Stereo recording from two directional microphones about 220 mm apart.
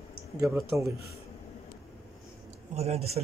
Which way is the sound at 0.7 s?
15° right (ahead or behind).